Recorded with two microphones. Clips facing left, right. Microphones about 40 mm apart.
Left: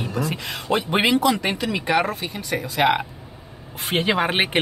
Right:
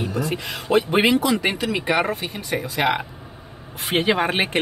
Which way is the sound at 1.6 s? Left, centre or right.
Centre.